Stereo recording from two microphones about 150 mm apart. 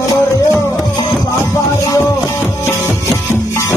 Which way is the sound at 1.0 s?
25° left (ahead or behind).